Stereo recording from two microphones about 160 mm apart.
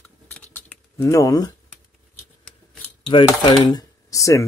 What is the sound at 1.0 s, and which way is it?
Speech, 20° left (ahead or behind).